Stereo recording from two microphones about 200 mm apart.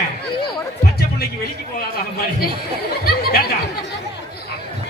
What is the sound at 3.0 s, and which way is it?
Chatter, 50° left (ahead or behind).